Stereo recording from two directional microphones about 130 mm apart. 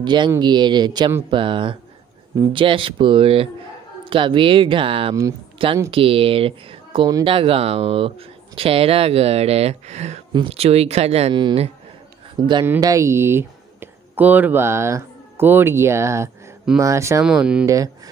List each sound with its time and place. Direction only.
0.0 s speech: 35° right (ahead or behind); by 11.3 s 55° right (ahead or behind)
11.3 s speech: 35° right (ahead or behind)
12.4 s speech: 25° right (ahead or behind)
17.2 s speech: 5° right (ahead or behind)
17.6 s speech: 25° right (ahead or behind)